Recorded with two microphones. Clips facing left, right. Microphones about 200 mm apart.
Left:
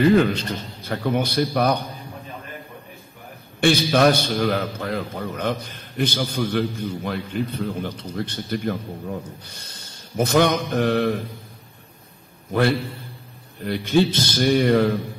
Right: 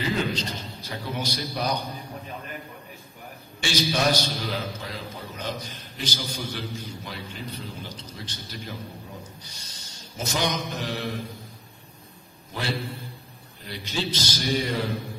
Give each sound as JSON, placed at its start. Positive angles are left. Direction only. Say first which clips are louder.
{"t": 0.0, "sound": "a man's voice", "louder": "left 10 dB", "side_deg": 55}
{"t": 3.6, "sound": "a man's voice", "louder": "left 8 dB", "side_deg": 55}
{"t": 12.4, "sound": "a man's voice", "louder": "left 10 dB", "side_deg": 55}